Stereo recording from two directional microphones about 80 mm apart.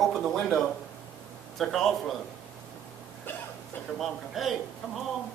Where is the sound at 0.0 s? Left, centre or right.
Centre.